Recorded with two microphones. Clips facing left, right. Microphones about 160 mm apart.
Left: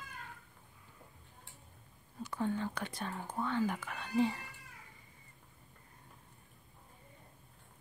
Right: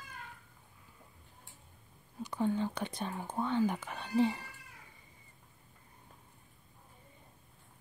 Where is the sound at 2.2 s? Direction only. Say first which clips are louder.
Right 3 dB; 15° right (ahead or behind).